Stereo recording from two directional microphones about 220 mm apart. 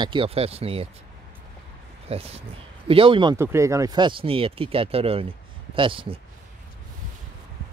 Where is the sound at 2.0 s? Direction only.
25° right (ahead or behind).